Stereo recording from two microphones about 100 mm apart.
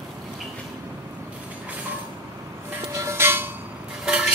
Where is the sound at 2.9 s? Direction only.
25° right (ahead or behind).